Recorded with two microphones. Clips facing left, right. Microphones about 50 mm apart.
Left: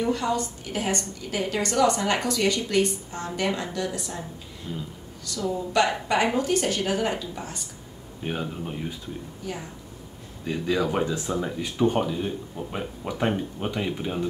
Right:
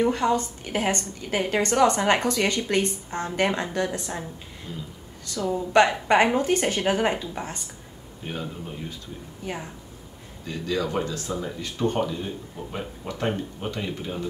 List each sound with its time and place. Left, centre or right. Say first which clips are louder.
0.0 s a woman's voice: right 3 dB; right
5.2 s a woman's voice: right 1 dB; right
8.2 s speech: left 3 dB; centre
9.4 s speech: right 3 dB; right
10.4 s speech: left 2 dB; centre